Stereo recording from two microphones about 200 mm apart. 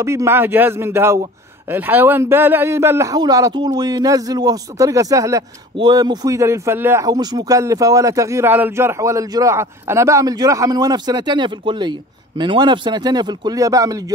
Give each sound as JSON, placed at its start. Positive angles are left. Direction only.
{"t": 0.0, "sound": "a man's voice", "side_deg": -15}